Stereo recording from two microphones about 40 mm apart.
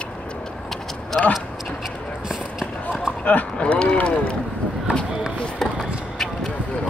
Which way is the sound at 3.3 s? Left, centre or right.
Left.